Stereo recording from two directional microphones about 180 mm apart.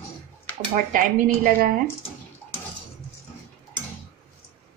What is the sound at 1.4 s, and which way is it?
Speech, 55° right (ahead or behind).